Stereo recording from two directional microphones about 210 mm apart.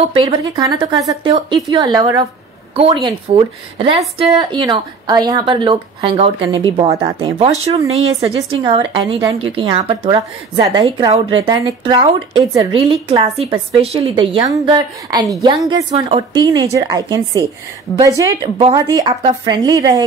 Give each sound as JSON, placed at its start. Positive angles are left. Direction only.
{"t": 0.2, "sound": "a woman's voice", "side_deg": -20}